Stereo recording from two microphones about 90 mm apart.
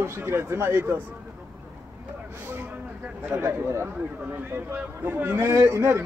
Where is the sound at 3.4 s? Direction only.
30° right (ahead or behind).